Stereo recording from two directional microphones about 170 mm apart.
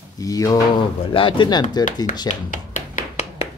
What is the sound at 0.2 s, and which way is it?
Speech, 20° left (ahead or behind).